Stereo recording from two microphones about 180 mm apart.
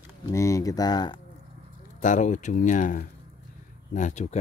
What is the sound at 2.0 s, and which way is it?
Speech, 45° left (ahead or behind).